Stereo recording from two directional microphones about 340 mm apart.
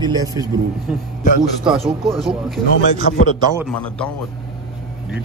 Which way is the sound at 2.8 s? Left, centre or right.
Left.